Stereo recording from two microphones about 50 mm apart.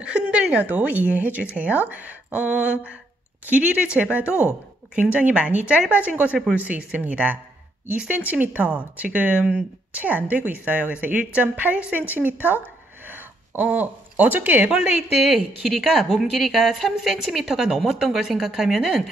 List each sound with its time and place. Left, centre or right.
0.0 s a woman's voice: centre
14.8 s a woman's voice: centre
15.2 s a woman's voice: centre